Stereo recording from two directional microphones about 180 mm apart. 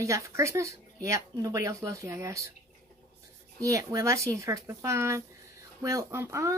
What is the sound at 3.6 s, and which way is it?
Speech, 20° right (ahead or behind).